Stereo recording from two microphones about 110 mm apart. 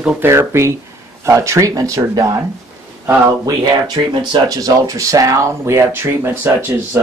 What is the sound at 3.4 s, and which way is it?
Speech, 35° right (ahead or behind).